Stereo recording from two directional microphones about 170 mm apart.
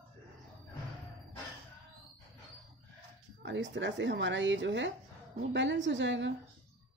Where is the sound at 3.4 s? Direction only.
90° right.